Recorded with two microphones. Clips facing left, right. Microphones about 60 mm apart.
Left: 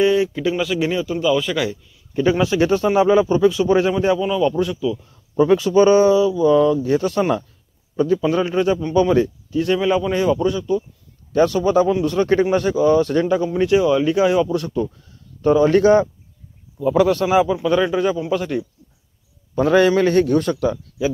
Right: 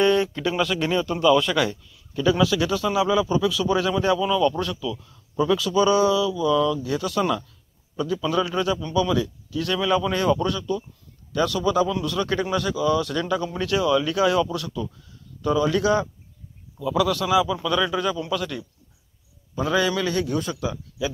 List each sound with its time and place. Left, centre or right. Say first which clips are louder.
0.0 s speech: left 3 dB; centre
2.1 s speech: left 4 dB; left; by 5.0 s centre
5.0 s speech: left 5 dB; left
9.6 s speech: left 5 dB; left
11.3 s speech: left 6 dB; left
19.5 s a man's voice: left 8 dB; left